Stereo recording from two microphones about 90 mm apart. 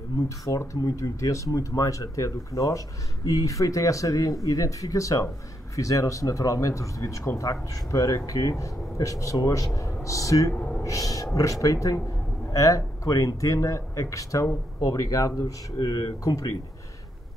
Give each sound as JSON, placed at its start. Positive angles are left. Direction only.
{"t": 0.5, "sound": "speech", "side_deg": 40}
{"t": 10.5, "sound": "speech", "side_deg": 15}
{"t": 10.8, "sound": "speech", "side_deg": 40}